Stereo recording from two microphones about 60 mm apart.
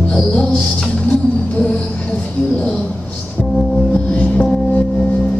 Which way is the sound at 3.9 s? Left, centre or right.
Left.